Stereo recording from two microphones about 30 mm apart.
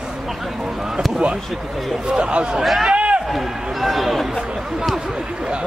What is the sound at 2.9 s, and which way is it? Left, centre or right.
Run, right.